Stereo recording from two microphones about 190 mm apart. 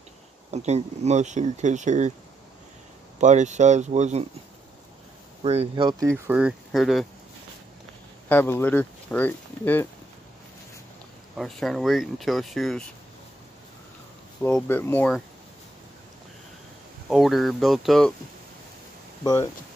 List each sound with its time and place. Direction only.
0.5 s speech: 35° right (ahead or behind)
3.2 s speech: 40° right (ahead or behind)
5.4 s speech: 30° right (ahead or behind); by 7.1 s centre (ahead or behind)
8.3 s speech: 10° left (ahead or behind)
11.3 s speech: centre (ahead or behind)
14.4 s speech: 10° left (ahead or behind)
17.1 s speech: centre (ahead or behind)